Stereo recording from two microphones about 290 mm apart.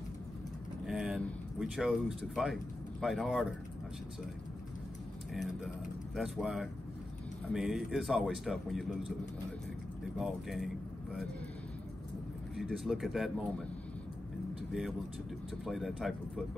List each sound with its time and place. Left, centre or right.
0.8 s speech: centre
6.1 s speech: centre
10.1 s speech: centre
12.5 s speech: centre
14.7 s speech: centre